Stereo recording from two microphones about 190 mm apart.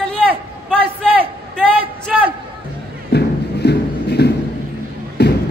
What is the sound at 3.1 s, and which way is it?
Music, 60° left (ahead or behind).